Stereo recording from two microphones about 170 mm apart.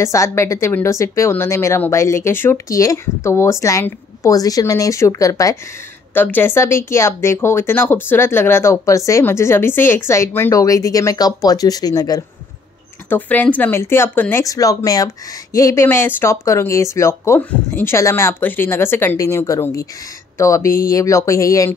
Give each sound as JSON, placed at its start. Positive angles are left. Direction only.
{"t": 0.0, "sound": "speech", "side_deg": 15}
{"t": 13.1, "sound": "speech", "side_deg": 10}